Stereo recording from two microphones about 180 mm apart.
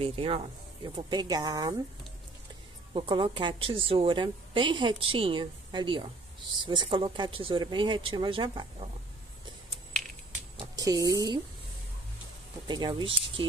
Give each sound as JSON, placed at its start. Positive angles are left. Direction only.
{"t": 0.0, "sound": "a woman's voice", "side_deg": -30}
{"t": 2.9, "sound": "a woman's voice", "side_deg": -25}
{"t": 10.8, "sound": "a woman's voice", "side_deg": -20}
{"t": 12.6, "sound": "a woman's voice", "side_deg": -25}